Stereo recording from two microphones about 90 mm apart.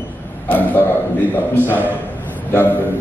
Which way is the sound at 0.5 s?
20° left (ahead or behind).